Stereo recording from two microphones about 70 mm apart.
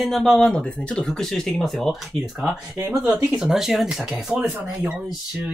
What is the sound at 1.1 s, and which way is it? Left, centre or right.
Speech, centre.